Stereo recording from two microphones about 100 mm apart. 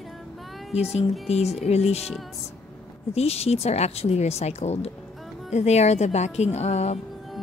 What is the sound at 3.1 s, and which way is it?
Speech, 90° left.